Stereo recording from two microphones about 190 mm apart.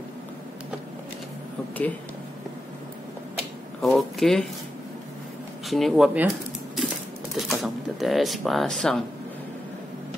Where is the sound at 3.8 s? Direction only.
Centre (ahead or behind).